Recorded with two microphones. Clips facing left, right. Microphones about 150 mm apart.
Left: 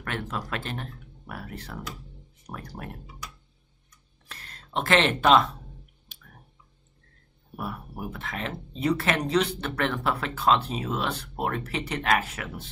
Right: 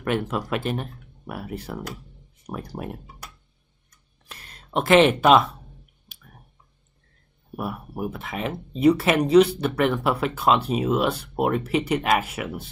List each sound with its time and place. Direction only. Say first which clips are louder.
0.0 s speech: right 8 dB; 15° right (ahead or behind)
4.3 s speech: right 5 dB; 15° right (ahead or behind)
7.5 s speech: right 5 dB; 10° right (ahead or behind)